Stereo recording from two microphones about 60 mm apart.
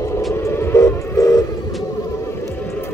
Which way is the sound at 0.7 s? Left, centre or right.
Left.